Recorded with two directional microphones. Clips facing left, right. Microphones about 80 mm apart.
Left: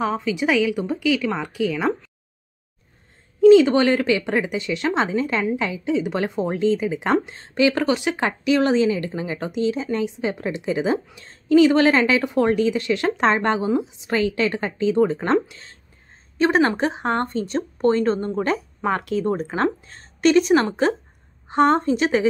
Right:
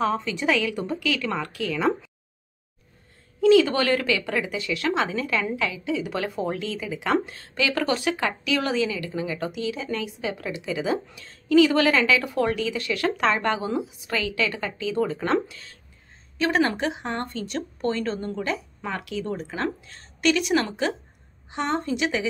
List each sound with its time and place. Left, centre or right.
0.0 s a woman's voice: centre
3.3 s a woman's voice: left
16.3 s speech: left